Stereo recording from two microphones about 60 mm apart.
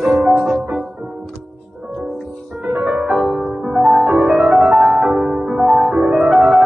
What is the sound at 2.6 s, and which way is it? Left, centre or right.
Music, right.